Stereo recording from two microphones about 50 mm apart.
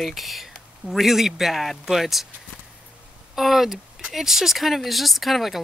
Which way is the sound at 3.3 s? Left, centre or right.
Centre.